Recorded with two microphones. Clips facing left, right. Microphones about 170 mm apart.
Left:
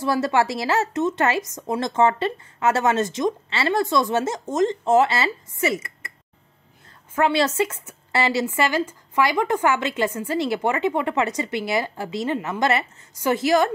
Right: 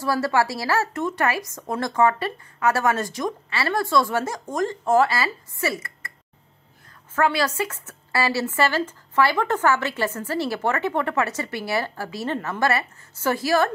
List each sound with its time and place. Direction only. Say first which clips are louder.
0.0 s speech: left 1 dB; 20° left (ahead or behind)
7.2 s speech: left 2 dB; 20° left (ahead or behind)